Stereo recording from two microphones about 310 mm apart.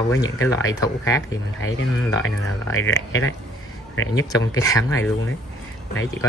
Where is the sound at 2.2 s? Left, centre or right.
Left.